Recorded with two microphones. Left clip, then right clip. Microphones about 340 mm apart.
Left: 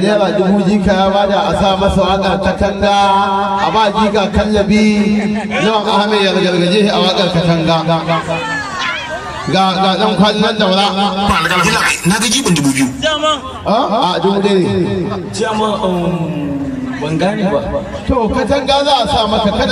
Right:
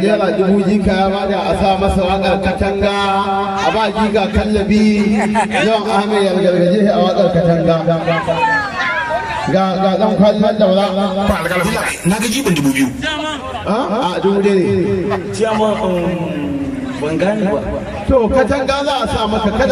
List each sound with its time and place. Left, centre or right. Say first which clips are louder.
0.0 s speech: left 1 dB; centre
6.7 s speech: left 1 dB; left
9.5 s speech: left 3 dB; left
13.7 s speech: left 5 dB; centre
18.5 s speech: left 4 dB; centre